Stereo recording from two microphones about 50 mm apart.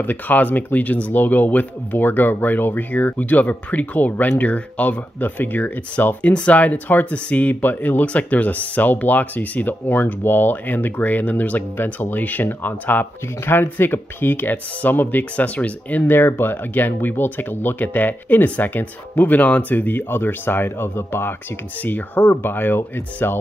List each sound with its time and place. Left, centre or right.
0.0 s speech: left
16.1 s speech: left
21.8 s speech: left